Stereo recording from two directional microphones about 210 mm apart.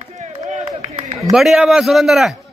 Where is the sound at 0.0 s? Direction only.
35° right (ahead or behind).